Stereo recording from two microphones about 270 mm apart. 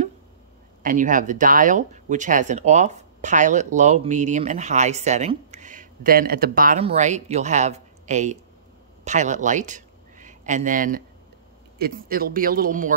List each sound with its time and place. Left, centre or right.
0.8 s speech: right